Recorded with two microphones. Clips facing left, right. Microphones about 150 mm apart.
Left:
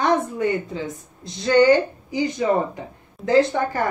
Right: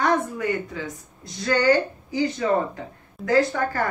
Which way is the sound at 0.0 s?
25° left (ahead or behind).